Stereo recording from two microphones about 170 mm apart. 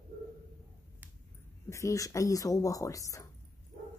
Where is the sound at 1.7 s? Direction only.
20° left (ahead or behind).